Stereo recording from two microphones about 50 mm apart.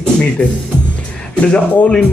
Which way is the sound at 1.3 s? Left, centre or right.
Left.